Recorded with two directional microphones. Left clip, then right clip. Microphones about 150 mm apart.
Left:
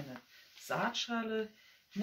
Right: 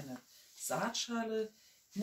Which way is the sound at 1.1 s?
15° left (ahead or behind).